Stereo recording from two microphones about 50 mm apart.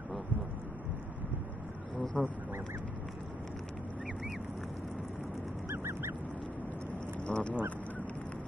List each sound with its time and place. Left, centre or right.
2.2 s speech: right
5.7 s duck: right
7.2 s goose: left